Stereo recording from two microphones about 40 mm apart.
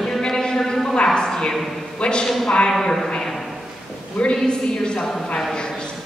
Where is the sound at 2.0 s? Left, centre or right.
Left.